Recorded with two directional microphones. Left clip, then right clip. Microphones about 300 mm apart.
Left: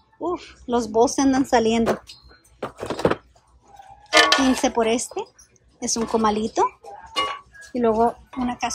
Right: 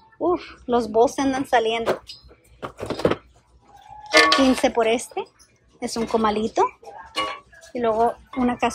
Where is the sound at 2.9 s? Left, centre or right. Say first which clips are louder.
Even; centre.